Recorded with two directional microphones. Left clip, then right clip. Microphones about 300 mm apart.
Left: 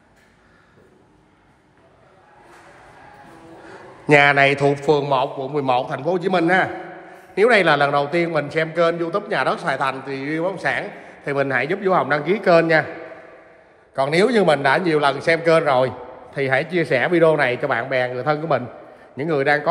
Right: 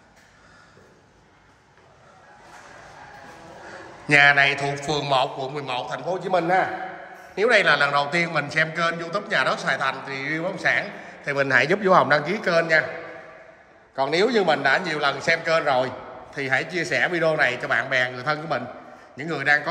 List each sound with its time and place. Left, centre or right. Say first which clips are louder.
3.6 s a man's voice: left 7 dB; centre
13.9 s a man's voice: left 3 dB; left